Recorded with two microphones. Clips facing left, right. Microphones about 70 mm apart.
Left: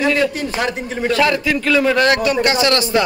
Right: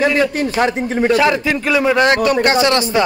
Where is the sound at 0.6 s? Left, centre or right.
Right.